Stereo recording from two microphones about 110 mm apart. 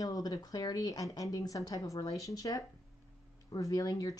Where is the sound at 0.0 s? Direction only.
35° left (ahead or behind).